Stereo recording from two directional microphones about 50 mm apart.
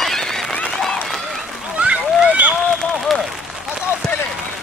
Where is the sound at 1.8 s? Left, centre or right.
Right.